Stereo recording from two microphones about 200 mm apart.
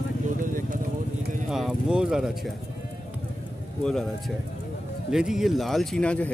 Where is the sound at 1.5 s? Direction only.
Centre (ahead or behind).